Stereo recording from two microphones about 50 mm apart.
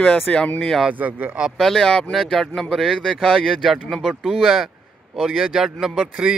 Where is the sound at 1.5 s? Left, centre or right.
Centre.